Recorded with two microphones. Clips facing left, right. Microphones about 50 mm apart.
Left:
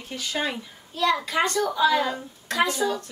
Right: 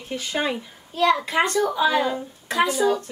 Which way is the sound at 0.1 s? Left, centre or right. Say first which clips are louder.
Right 3 dB; right.